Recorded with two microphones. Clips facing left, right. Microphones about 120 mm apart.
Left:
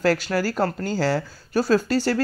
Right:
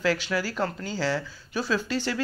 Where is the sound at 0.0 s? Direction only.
45° left (ahead or behind).